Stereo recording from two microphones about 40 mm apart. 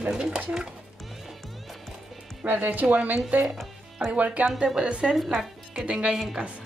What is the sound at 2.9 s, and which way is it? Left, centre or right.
Speech, right.